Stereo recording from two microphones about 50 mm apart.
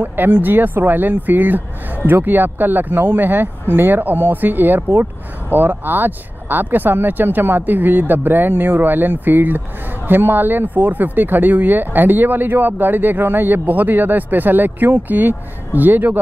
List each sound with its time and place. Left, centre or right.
0.0 s speech: right